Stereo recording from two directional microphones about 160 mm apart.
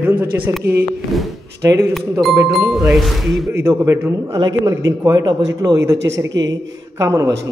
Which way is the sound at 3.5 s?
15° right (ahead or behind).